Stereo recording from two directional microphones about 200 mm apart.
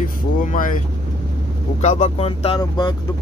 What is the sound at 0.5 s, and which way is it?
Speech, 45° left (ahead or behind).